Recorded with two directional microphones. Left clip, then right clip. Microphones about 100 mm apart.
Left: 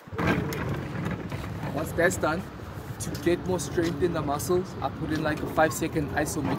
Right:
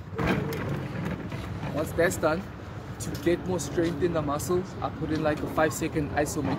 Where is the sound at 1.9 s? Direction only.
45° right (ahead or behind).